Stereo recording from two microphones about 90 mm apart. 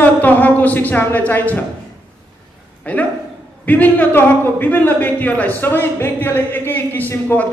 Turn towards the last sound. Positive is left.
turn(degrees=20)  # may be behind; listen again after turning